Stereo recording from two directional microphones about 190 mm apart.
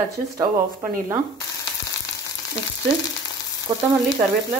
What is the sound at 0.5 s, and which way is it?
Speech, 45° right (ahead or behind).